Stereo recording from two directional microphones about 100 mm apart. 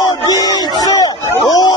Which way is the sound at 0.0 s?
40° left (ahead or behind).